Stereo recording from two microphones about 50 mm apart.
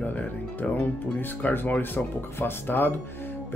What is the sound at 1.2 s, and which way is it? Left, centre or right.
Speech, left.